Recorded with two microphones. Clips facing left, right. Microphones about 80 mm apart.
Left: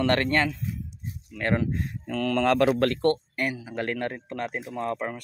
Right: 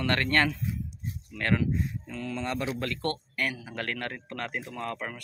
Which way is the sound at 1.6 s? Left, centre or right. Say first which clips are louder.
Left 1 dB; left.